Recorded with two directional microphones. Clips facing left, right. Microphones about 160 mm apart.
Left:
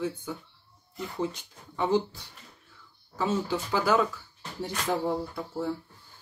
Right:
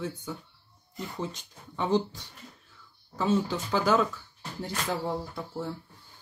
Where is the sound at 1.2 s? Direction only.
5° left (ahead or behind).